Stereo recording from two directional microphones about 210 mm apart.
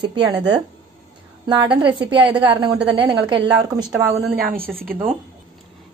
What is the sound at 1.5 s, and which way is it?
A woman's voice, 20° right (ahead or behind).